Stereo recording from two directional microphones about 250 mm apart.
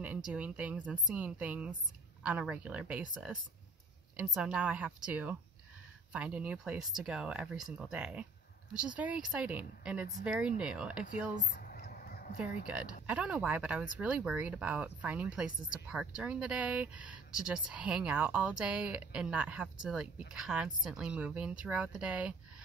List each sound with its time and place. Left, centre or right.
0.0 s speech: centre
11.3 s a sound: left
12.6 s speech: centre